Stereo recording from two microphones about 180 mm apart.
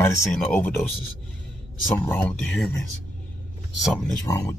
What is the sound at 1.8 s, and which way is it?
Speech, 10° left (ahead or behind).